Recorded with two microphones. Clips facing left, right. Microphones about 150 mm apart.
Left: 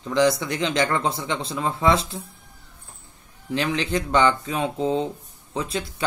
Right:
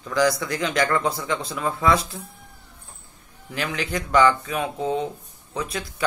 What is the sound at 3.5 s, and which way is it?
Speech, 25° left (ahead or behind).